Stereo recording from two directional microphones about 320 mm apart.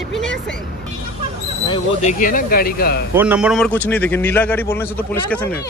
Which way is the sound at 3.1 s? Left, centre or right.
Centre.